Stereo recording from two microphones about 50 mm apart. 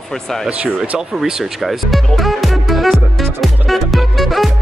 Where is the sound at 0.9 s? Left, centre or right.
Centre.